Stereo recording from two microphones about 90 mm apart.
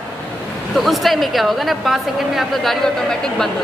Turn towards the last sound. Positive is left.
turn(degrees=5)  # may be behind; listen again after turning